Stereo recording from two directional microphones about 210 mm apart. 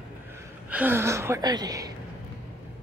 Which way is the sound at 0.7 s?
10° right (ahead or behind).